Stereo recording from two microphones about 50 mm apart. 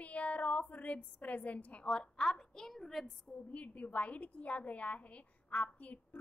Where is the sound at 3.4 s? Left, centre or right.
Left.